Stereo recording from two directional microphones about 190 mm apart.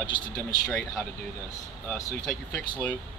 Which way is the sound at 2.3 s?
5° left (ahead or behind).